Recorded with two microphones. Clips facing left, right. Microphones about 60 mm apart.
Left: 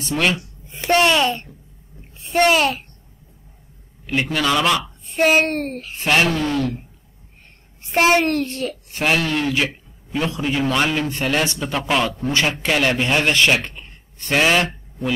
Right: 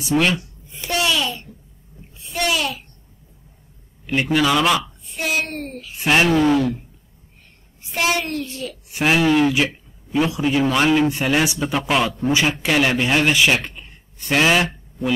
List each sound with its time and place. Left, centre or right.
0.0 s a man's voice: centre
0.7 s a child's voice: left
4.0 s a man's voice: centre
5.0 s speech: left
6.0 s speech: centre
7.8 s a child's voice: left
8.9 s a man's voice: centre
13.5 s a sound: centre